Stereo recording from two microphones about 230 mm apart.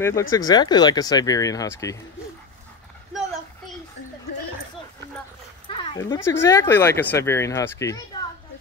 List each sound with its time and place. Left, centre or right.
0.0 s speech: centre
3.1 s a sound: centre
5.7 s speech: centre